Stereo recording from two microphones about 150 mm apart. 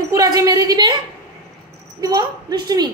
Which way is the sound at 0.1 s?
25° right (ahead or behind).